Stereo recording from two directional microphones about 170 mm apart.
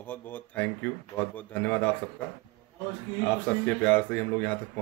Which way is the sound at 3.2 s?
10° left (ahead or behind).